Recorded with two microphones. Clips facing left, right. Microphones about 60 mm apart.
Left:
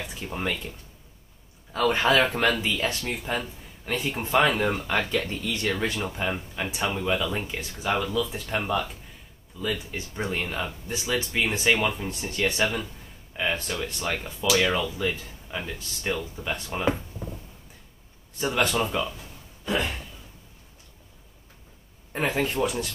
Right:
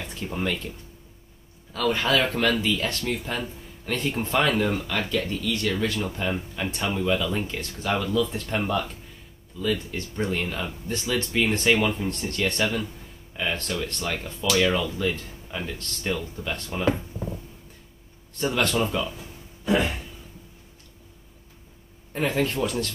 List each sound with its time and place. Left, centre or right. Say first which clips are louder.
0.0 s speech: right 2 dB; centre
1.7 s speech: left 1 dB; left
5.9 s speech: right 1 dB; centre
18.4 s speech: right 1 dB; centre
19.6 s a sound: right 4 dB; centre
22.1 s speech: right 1 dB; centre